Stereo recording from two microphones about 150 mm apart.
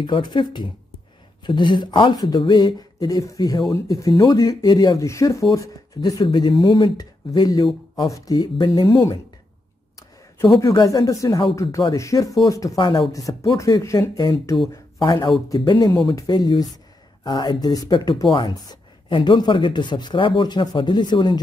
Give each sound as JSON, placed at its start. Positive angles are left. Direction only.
{"t": 0.0, "sound": "speech", "side_deg": 30}
{"t": 4.1, "sound": "speech", "side_deg": 35}
{"t": 4.4, "sound": "speech", "side_deg": 25}
{"t": 8.6, "sound": "speech", "side_deg": 40}
{"t": 10.6, "sound": "speech", "side_deg": 20}